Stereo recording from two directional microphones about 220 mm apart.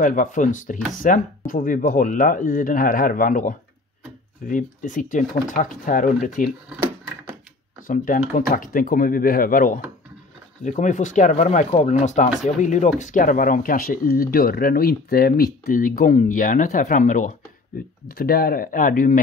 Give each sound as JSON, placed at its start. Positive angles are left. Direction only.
{"t": 0.0, "sound": "speech", "side_deg": 35}
{"t": 7.8, "sound": "speech", "side_deg": 40}